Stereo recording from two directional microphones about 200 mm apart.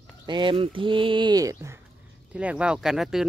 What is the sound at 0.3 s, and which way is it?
Speech, 25° right (ahead or behind).